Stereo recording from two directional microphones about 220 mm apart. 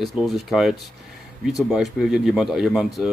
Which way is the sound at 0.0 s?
Centre (ahead or behind).